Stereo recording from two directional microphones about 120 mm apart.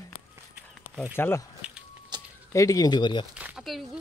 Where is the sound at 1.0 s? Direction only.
20° left (ahead or behind).